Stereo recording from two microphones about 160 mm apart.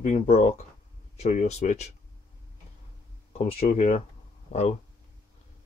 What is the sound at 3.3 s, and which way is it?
Speech, 40° left (ahead or behind).